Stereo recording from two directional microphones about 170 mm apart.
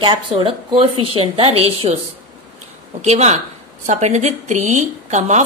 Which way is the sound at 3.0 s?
40° right (ahead or behind).